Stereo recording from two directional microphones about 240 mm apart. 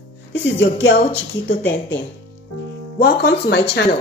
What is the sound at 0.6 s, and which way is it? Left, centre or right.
Speech, left.